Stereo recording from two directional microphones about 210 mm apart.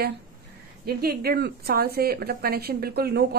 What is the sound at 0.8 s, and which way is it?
A woman's voice, 50° right (ahead or behind).